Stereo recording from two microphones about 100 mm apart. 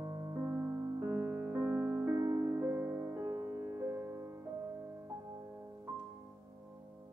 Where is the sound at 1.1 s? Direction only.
20° right (ahead or behind).